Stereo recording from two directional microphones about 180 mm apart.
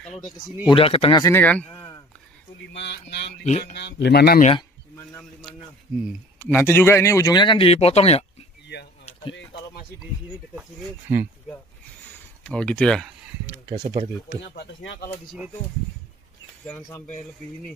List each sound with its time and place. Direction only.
0.7 s speech: 30° left (ahead or behind)
1.2 s speech: 10° left (ahead or behind)
2.7 s speech: 70° left (ahead or behind)
3.4 s speech: 40° left (ahead or behind)
3.7 s speech: 70° left (ahead or behind)
6.5 s speech: 15° left (ahead or behind); by 8.3 s 35° left (ahead or behind)
8.7 s a sound: 70° left (ahead or behind)
11.1 s speech: 10° right (ahead or behind)
12.4 s speech: 5° left (ahead or behind)
13.7 s speech: 35° right (ahead or behind)
14.4 s speech: 70° left (ahead or behind)
16.6 s speech: 10° left (ahead or behind)